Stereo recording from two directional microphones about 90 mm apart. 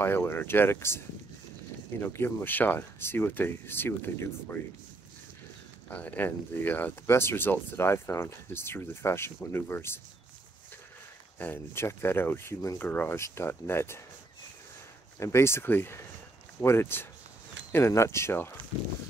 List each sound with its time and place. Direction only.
0.0 s speech: 25° left (ahead or behind)
2.0 s speech: 25° left (ahead or behind)
5.9 s speech: 20° left (ahead or behind)
11.3 s speech: 20° left (ahead or behind)
15.1 s speech: 30° left (ahead or behind)